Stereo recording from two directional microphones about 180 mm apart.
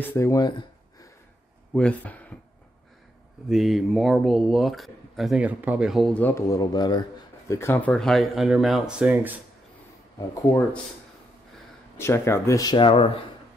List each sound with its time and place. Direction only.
0.0 s speech: 15° left (ahead or behind)
1.7 s speech: 5° left (ahead or behind)
3.4 s speech: centre (ahead or behind)
12.0 s speech: 15° left (ahead or behind); by 13.2 s 30° left (ahead or behind)